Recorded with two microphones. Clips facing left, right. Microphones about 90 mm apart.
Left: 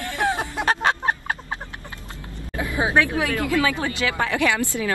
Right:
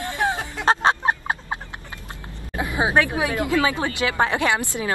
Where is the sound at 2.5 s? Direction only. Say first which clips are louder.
Right 1 dB; 20° right (ahead or behind).